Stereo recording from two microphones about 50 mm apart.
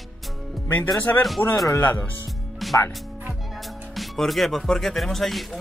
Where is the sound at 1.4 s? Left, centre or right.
Left.